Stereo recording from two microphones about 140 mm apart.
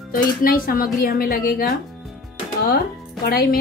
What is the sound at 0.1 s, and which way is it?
A woman's voice, 90° left.